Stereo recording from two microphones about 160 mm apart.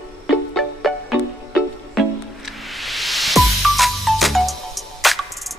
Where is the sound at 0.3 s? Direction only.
Centre (ahead or behind).